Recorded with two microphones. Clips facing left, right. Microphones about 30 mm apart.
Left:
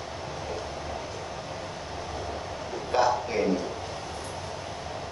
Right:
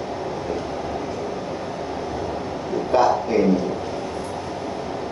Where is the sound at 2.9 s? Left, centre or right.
Centre.